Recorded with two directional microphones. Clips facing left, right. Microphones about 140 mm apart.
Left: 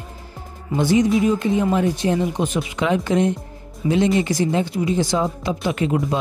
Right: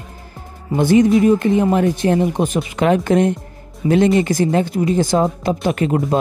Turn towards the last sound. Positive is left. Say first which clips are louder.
# right 3 dB
turn(degrees=-50)  # may be behind; listen again after turning